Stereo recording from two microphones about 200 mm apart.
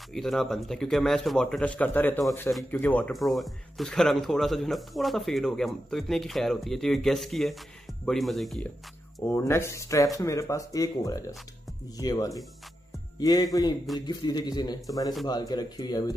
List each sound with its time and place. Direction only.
0.1 s speech: centre (ahead or behind)
9.2 s a man's voice: 10° left (ahead or behind)